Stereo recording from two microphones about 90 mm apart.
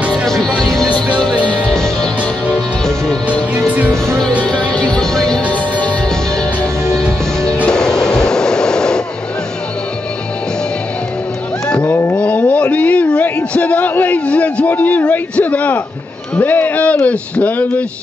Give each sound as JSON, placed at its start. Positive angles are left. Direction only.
{"t": 0.1, "sound": "music", "side_deg": 5}
{"t": 4.5, "sound": "music", "side_deg": 10}
{"t": 11.7, "sound": "a sound", "side_deg": 15}